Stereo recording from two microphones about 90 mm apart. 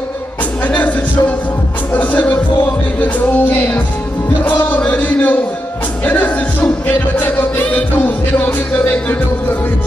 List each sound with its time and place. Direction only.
0.7 s music: 15° left (ahead or behind)
2.0 s music: 15° left (ahead or behind)